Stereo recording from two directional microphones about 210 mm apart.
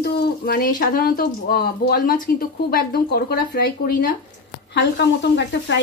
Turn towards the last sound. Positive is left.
turn(degrees=55)  # may be behind; listen again after turning